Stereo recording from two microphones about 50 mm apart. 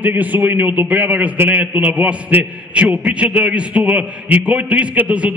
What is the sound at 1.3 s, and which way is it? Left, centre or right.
Speech, right.